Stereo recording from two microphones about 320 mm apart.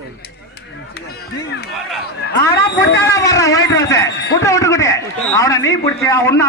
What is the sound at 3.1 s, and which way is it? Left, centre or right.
A man's voice, centre.